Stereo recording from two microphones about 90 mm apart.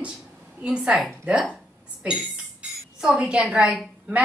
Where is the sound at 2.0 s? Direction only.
10° right (ahead or behind).